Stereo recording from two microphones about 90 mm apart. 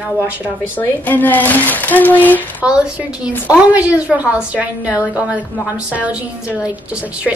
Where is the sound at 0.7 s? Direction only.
20° left (ahead or behind).